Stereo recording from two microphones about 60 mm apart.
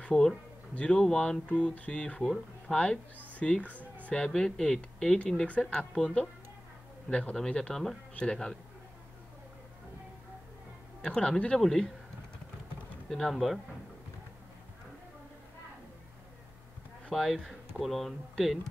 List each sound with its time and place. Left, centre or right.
0.0 s speech: centre
11.0 s speech: centre
11.6 s speech: centre
13.1 s speech: centre
17.1 s speech: centre